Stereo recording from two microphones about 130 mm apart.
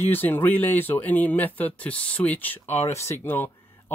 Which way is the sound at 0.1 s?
15° left (ahead or behind).